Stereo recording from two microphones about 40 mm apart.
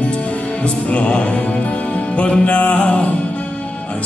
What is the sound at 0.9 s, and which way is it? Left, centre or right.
Music, left.